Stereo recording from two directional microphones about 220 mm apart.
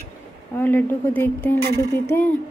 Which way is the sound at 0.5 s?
10° left (ahead or behind).